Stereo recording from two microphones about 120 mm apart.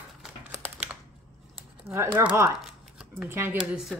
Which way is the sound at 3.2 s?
20° right (ahead or behind).